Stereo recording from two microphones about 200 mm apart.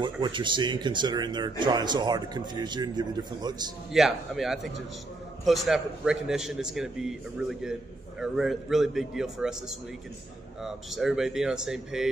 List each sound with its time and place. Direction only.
0.0 s speech: 25° right (ahead or behind)
3.9 s a man's voice: centre (ahead or behind)